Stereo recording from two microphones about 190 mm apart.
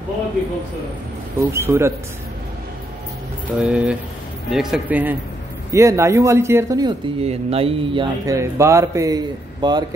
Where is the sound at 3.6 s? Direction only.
5° right (ahead or behind).